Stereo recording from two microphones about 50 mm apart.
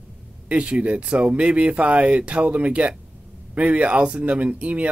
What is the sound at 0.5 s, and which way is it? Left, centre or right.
Speech, right.